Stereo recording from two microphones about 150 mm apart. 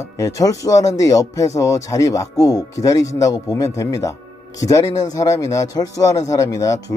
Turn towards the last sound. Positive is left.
turn(degrees=20)  # may be behind; listen again after turning